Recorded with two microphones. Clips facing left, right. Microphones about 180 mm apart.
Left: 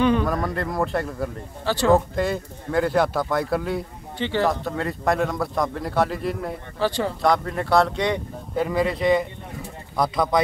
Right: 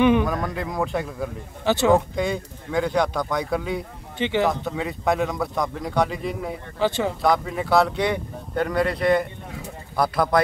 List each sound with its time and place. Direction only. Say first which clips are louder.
0.0 s a sound: right 2 dB; 15° right (ahead or behind)
0.3 s speech: left 2 dB; centre (ahead or behind)
1.6 s speech: right 1 dB; 20° right (ahead or behind)
2.1 s speech: left 1 dB; centre (ahead or behind)
4.2 s speech: right 1 dB; 20° right (ahead or behind)
4.5 s speech: left 1 dB; centre (ahead or behind)
6.8 s speech: right 1 dB; 20° right (ahead or behind)
7.2 s speech: even; centre (ahead or behind)